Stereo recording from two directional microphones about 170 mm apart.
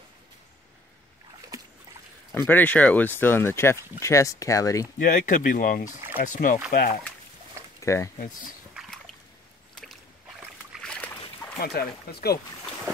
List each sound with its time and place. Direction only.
2.3 s speech: 10° left (ahead or behind)
4.9 s speech: 55° left (ahead or behind)
6.7 s speech: 60° left (ahead or behind)
7.8 s speech: 15° left (ahead or behind)
8.7 s a sound: centre (ahead or behind)
10.8 s a sound: 5° left (ahead or behind)
11.6 s speech: 65° left (ahead or behind)